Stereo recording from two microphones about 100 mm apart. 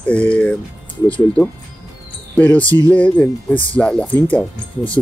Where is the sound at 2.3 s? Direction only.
15° left (ahead or behind).